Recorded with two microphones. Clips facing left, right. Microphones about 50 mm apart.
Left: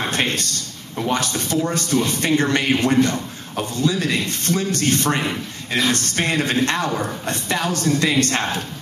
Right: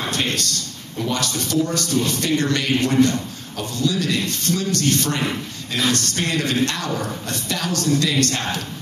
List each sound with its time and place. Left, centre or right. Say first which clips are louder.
0.1 s a man's voice: left 1 dB; left